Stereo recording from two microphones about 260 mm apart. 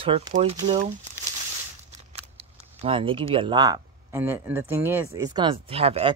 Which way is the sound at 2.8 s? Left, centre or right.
Centre.